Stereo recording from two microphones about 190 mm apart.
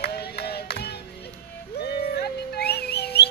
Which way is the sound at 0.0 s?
60° left (ahead or behind).